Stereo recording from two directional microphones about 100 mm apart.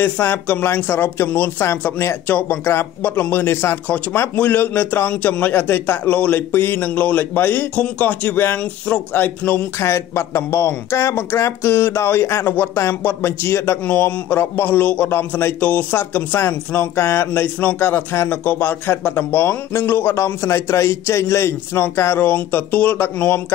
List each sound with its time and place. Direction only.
0.0 s speech: 20° left (ahead or behind)
9.8 s speech: 30° left (ahead or behind)